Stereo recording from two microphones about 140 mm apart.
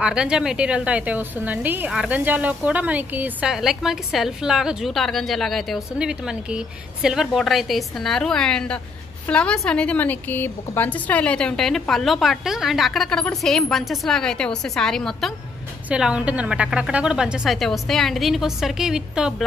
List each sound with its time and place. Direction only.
0.0 s a woman's voice: 5° right (ahead or behind)